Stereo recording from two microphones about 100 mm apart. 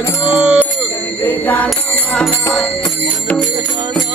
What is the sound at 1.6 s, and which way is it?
Music, 5° left (ahead or behind).